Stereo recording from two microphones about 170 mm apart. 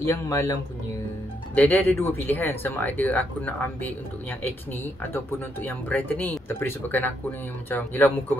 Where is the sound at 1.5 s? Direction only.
10° left (ahead or behind).